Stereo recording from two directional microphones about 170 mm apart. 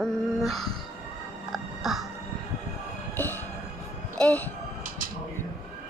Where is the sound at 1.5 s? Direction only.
Centre (ahead or behind).